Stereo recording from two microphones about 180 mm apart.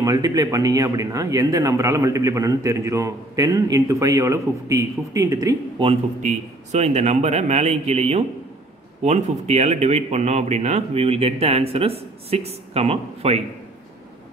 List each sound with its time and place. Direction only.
0.0 s a man's voice: 20° right (ahead or behind)
6.2 s speech: 40° right (ahead or behind)